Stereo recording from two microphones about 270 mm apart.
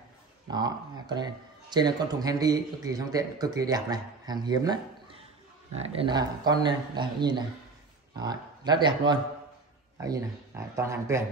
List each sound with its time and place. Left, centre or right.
0.5 s speech: centre